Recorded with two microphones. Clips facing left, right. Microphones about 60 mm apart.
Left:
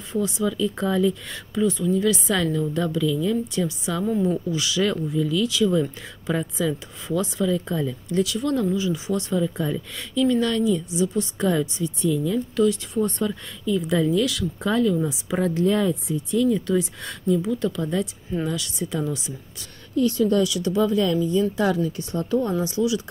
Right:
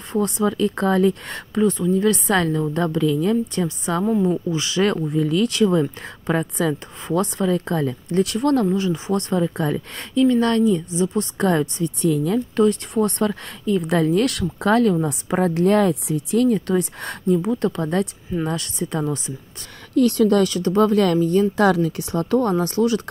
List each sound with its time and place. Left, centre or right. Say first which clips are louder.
0.1 s speech: right 4 dB; right
4.2 s a woman's voice: right 3 dB; right
4.9 s speech: right 3 dB; right
9.8 s a woman's voice: right 4 dB; right
11.3 s speech: right 5 dB; right
12.6 s a woman's voice: right 3 dB; right
12.9 s speech: right 4 dB; right
16.4 s speech: right 2 dB; right
20.0 s speech: right 4 dB; right
20.4 s speech: right 4 dB; right